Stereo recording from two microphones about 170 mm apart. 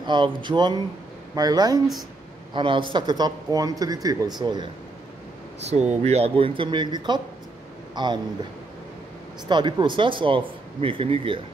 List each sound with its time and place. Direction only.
0.0 s speech: 25° right (ahead or behind)
5.7 s speech: 40° right (ahead or behind)
9.5 s speech: 25° right (ahead or behind)